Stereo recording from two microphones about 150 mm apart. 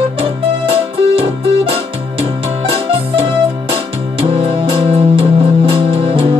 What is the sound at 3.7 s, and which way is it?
Music, 35° right (ahead or behind).